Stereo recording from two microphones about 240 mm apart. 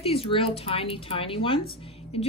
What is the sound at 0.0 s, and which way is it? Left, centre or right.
Speech, left.